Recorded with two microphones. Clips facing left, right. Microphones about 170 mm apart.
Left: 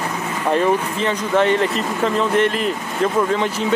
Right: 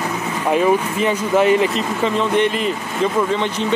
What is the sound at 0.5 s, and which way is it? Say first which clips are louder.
Speech: right 2 dB; 10° right (ahead or behind).